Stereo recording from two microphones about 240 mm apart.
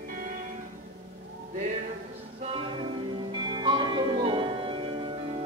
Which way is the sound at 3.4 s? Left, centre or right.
Centre.